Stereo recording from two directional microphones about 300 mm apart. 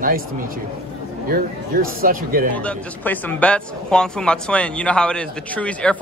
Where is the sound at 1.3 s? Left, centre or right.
Right.